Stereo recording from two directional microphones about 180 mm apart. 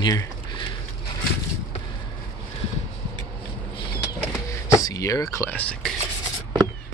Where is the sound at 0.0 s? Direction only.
20° left (ahead or behind).